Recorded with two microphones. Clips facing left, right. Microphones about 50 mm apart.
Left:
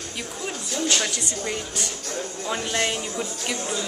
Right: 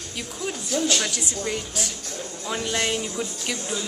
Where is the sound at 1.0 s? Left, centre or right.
Centre.